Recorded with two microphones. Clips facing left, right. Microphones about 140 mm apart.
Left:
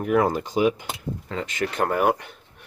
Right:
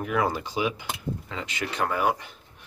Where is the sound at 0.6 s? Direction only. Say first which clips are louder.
Left 6 dB; 45° left (ahead or behind).